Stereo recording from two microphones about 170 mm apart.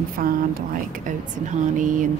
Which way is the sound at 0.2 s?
50° right (ahead or behind).